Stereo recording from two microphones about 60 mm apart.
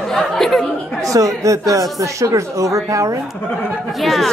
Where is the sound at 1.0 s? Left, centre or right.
Right.